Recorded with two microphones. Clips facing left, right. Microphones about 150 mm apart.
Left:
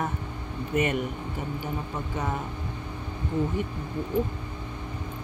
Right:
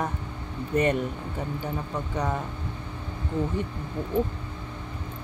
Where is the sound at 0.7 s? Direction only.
35° right (ahead or behind).